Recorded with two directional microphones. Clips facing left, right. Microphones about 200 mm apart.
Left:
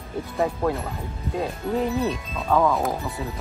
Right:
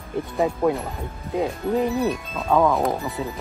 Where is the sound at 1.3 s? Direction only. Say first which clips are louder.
Right 3 dB; 20° right (ahead or behind).